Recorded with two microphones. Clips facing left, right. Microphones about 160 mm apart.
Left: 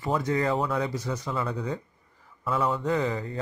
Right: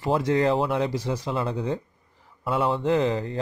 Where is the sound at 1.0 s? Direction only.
30° right (ahead or behind).